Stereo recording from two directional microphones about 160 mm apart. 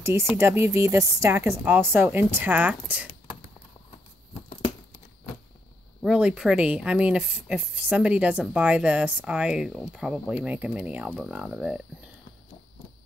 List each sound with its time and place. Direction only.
0.4 s speech: 15° right (ahead or behind)
6.0 s speech: 5° right (ahead or behind)